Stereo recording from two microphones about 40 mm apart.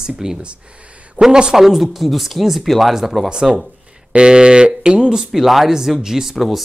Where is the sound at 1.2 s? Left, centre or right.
Right.